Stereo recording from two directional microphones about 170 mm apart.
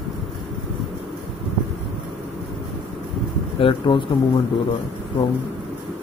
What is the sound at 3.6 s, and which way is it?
Speech, 30° left (ahead or behind).